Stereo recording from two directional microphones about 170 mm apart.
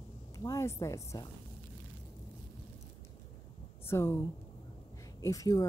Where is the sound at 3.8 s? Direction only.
15° left (ahead or behind).